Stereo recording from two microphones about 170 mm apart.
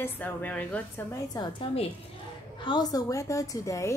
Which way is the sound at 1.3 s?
30° left (ahead or behind).